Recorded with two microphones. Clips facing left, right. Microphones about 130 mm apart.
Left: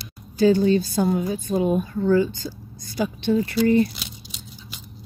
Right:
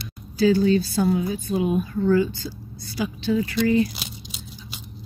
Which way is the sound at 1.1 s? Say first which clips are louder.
Left 1 dB; 40° left (ahead or behind).